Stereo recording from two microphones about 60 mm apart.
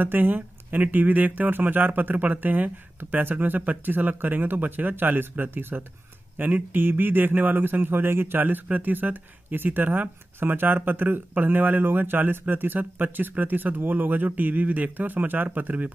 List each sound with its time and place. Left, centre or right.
0.0 s speech: right